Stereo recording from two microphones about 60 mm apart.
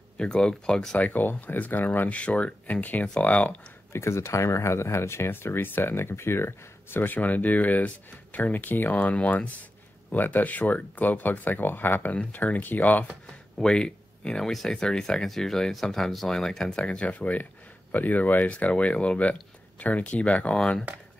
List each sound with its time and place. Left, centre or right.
0.2 s speech: centre
0.9 s speech: left
3.9 s speech: left
13.6 s speech: centre
16.7 s speech: left